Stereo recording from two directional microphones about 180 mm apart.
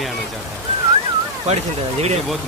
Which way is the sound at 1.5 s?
35° right (ahead or behind).